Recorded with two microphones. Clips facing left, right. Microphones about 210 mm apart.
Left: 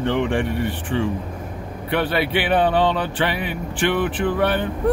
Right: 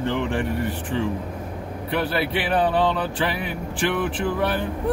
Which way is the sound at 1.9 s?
75° left (ahead or behind).